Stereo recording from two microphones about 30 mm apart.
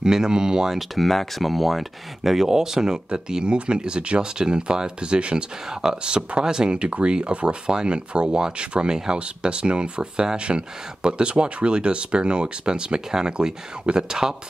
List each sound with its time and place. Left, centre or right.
0.0 s speech: right
0.7 s speech: centre; by 5.4 s right
5.7 s speech: centre
6.0 s speech: right
8.8 s speech: right